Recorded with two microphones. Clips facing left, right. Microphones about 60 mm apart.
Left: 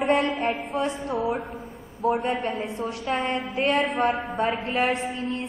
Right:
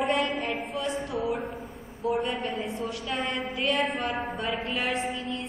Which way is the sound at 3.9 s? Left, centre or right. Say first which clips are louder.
Left 6 dB; left.